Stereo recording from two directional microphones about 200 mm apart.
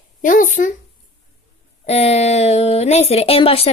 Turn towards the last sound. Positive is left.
turn(degrees=30)  # may be behind; listen again after turning